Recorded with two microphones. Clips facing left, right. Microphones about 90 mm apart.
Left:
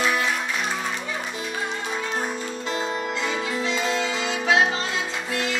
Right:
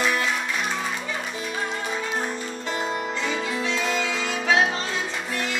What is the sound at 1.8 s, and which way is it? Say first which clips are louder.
Music: even; centre (ahead or behind).